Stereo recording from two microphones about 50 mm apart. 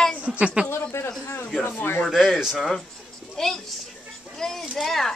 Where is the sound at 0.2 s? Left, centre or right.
Right.